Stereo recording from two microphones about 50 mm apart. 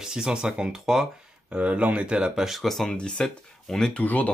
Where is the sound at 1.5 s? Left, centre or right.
Right.